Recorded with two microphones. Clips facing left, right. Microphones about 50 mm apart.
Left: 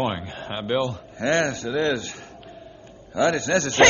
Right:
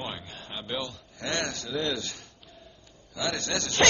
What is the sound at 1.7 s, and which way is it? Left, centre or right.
Speech, left.